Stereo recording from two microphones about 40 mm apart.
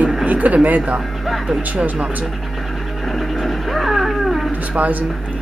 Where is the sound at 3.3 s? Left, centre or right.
Centre.